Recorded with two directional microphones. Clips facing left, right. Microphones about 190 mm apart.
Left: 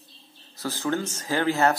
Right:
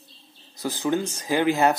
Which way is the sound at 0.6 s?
15° right (ahead or behind).